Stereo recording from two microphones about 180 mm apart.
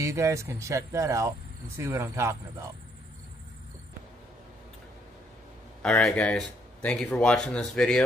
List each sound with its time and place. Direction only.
0.0 s speech: 15° right (ahead or behind)
5.8 s speech: 5° left (ahead or behind)